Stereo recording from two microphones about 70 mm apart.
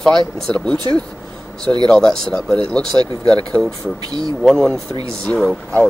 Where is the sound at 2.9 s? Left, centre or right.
Right.